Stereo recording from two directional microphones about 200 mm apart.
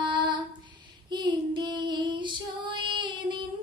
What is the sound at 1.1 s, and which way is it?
Female singing, 20° right (ahead or behind).